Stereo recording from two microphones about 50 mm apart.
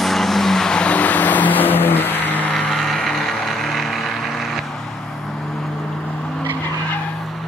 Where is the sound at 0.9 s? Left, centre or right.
Left.